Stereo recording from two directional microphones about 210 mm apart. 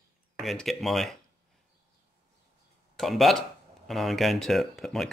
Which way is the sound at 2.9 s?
Centre (ahead or behind).